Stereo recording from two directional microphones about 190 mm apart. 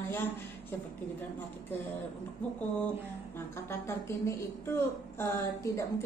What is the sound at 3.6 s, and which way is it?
A woman's voice, 15° left (ahead or behind).